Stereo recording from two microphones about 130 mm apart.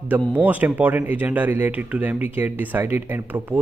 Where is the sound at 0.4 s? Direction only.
15° right (ahead or behind).